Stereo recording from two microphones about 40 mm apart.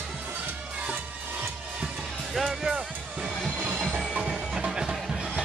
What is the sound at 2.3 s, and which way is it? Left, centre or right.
Speech, centre.